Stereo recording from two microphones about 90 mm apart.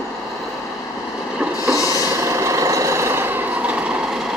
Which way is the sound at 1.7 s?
40° left (ahead or behind).